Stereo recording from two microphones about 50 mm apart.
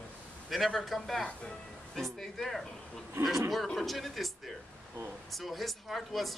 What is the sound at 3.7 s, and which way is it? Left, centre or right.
Speech, centre.